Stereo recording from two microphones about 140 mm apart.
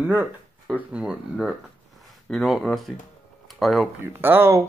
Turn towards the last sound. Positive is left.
turn(degrees=-15)  # may be behind; listen again after turning